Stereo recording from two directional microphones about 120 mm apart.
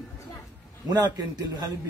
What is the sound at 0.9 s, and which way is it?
Speech, 35° right (ahead or behind).